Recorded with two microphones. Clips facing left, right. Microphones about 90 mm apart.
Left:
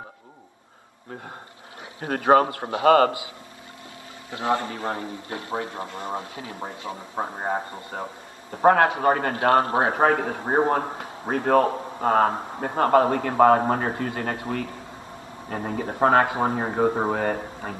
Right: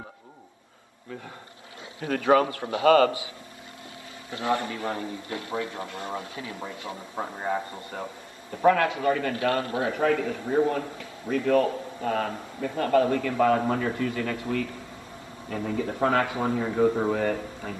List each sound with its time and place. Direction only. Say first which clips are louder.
2.0 s a man's voice: left 3 dB; 45° left (ahead or behind)
4.3 s speech: left 2 dB; 25° left (ahead or behind)
4.7 s a man's voice: left 2 dB; 50° left (ahead or behind)
5.0 s a man's voice: left 1 dB; 35° left (ahead or behind)
5.8 s speech: left 3 dB; 25° left (ahead or behind)
7.2 s a man's voice: left 2 dB; 50° left (ahead or behind)
10.4 s speech: left 2 dB; 65° left (ahead or behind)
11.0 s a man's voice: left 2 dB; 50° left (ahead or behind); by 17.1 s 75° left (ahead or behind)
17.1 s a man's voice: left 1 dB; 55° left (ahead or behind)